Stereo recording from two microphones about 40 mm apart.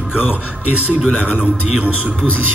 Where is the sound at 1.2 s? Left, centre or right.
Right.